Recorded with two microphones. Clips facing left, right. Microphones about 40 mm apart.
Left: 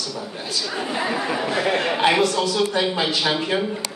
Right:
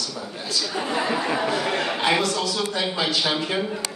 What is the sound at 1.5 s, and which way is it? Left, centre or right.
Speech, centre.